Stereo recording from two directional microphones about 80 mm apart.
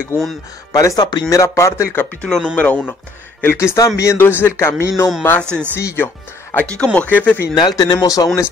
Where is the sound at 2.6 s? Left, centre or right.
Left.